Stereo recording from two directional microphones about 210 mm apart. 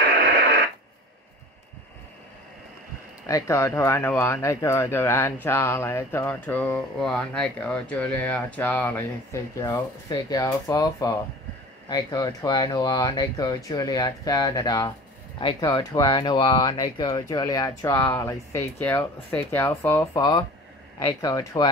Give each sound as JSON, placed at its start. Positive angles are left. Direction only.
{"t": 3.3, "sound": "speech", "side_deg": 15}
{"t": 20.2, "sound": "speech", "side_deg": 20}